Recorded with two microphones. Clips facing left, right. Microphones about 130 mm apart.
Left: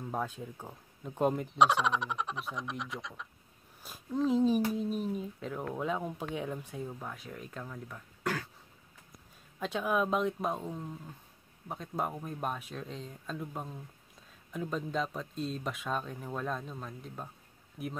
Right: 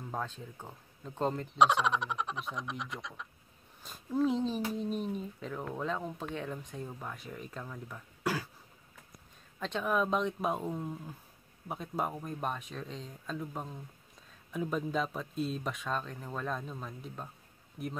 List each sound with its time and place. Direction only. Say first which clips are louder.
0.1 s speech: left 2 dB; 10° left (ahead or behind)
1.5 s speech: right 3 dB; centre (ahead or behind)
9.6 s speech: left 1 dB; 5° left (ahead or behind)